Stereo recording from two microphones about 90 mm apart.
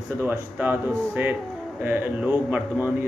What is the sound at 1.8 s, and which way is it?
Speech, 20° right (ahead or behind).